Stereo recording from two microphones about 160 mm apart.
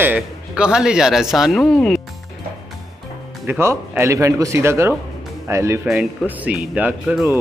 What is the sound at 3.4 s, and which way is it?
A man's voice, 15° right (ahead or behind).